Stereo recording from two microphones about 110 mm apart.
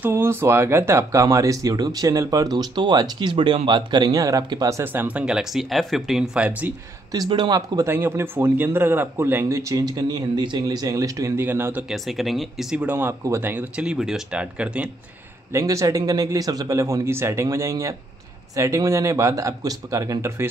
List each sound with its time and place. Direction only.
0.0 s speech: 20° right (ahead or behind)
7.2 s speech: 40° right (ahead or behind)
7.8 s speech: 20° right (ahead or behind)
11.3 s speech: 20° right (ahead or behind)
11.9 s speech: centre (ahead or behind)
15.5 s speech: 30° right (ahead or behind)